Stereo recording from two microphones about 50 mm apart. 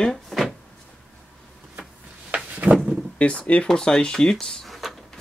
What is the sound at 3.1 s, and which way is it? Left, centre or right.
Speech, left.